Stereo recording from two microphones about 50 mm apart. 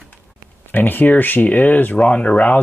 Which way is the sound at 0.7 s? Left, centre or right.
Left.